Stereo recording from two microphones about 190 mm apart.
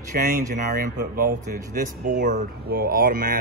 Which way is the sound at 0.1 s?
50° right (ahead or behind).